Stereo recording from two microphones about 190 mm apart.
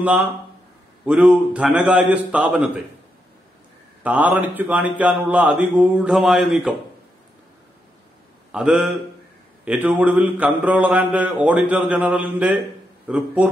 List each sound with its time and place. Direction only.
0.0 s speech: 10° right (ahead or behind)
4.0 s speech: 10° right (ahead or behind)
8.5 s a man's voice: 5° right (ahead or behind)